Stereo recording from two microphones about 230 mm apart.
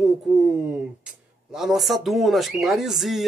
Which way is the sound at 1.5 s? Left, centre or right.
Centre.